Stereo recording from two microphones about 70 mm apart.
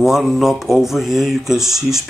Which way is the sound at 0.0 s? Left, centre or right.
Centre.